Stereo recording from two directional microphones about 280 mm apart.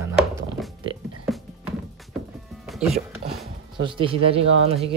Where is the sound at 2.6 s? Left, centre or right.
Centre.